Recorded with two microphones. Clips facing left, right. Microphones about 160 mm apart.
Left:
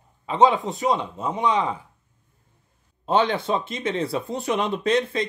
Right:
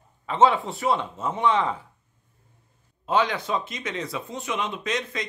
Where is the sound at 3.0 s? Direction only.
30° left (ahead or behind).